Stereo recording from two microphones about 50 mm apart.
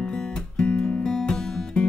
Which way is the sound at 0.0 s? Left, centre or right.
Centre.